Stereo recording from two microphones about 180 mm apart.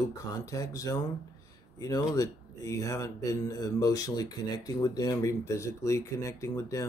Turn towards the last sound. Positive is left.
turn(degrees=15)  # may be behind; listen again after turning